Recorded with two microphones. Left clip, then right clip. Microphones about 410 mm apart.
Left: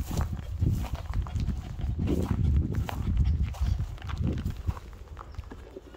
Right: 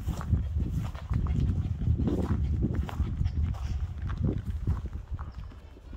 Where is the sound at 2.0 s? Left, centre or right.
Left.